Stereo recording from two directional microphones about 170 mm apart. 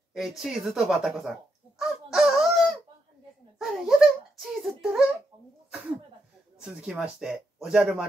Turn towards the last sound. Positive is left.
turn(degrees=-5)  # may be behind; listen again after turning